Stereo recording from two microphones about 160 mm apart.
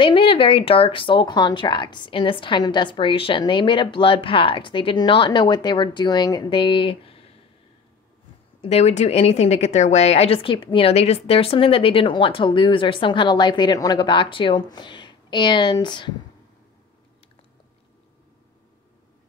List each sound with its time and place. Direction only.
0.0 s a woman's voice: 35° left (ahead or behind)
8.5 s a woman's voice: 40° left (ahead or behind)